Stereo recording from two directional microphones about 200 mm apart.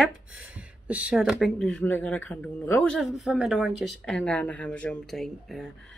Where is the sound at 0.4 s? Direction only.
5° right (ahead or behind).